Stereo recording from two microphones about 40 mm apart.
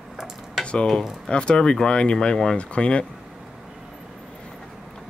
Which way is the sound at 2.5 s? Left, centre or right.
Left.